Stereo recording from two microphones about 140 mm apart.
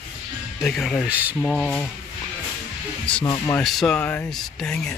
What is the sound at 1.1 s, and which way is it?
Speech, 10° right (ahead or behind).